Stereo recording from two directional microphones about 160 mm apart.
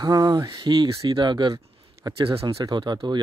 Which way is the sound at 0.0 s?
25° right (ahead or behind).